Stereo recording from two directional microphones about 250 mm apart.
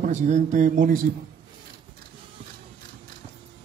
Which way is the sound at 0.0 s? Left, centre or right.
Right.